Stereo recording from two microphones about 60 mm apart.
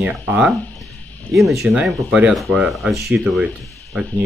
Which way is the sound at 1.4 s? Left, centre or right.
Centre.